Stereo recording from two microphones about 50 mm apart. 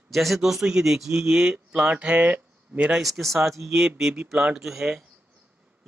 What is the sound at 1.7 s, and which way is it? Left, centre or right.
Speech, right.